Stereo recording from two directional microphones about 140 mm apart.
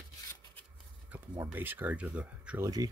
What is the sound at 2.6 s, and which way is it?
Speech, 25° right (ahead or behind).